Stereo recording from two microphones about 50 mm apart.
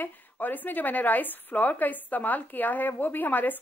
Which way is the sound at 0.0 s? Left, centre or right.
Left.